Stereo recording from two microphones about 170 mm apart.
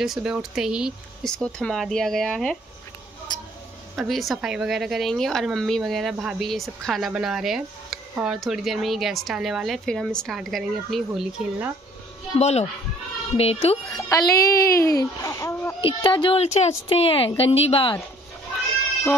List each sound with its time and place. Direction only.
0.0 s speech: 5° right (ahead or behind)
3.9 s speech: centre (ahead or behind)
12.4 s speech: 40° left (ahead or behind)
14.0 s speech: 20° left (ahead or behind)
15.8 s speech: 30° left (ahead or behind)